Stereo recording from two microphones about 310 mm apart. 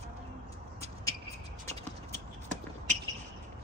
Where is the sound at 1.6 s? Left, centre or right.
Right.